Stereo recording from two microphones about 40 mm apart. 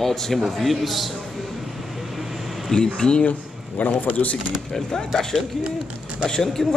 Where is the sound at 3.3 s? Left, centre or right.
Left.